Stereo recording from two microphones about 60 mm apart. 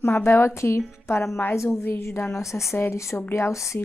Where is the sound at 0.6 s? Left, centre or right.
Left.